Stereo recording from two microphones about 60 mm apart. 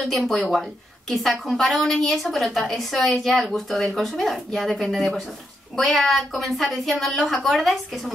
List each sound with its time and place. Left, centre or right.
0.0 s a woman's voice: centre